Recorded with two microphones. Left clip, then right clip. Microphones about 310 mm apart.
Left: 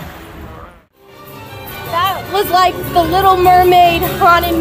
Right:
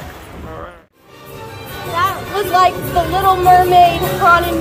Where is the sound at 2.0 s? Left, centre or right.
Left.